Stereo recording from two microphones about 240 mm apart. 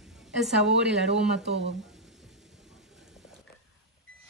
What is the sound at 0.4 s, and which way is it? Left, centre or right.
Speech, centre.